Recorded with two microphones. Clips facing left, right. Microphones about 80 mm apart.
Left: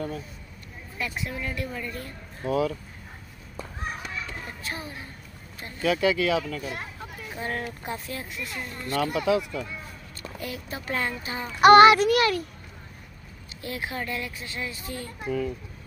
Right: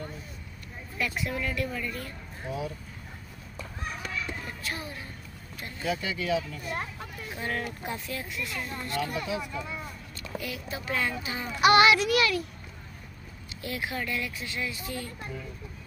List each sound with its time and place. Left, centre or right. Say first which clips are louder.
0.9 s speech: right 1 dB; left
2.4 s speech: left 9 dB; left
4.5 s speech: left 1 dB; left
5.8 s speech: left 8 dB; left
7.3 s speech: left 1 dB; left
9.1 s speech: left 8 dB; left
10.2 s speech: even; left
13.6 s speech: left 1 dB; left
15.2 s speech: left 11 dB; left